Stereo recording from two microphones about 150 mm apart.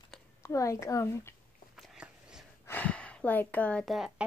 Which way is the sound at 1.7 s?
5° right (ahead or behind).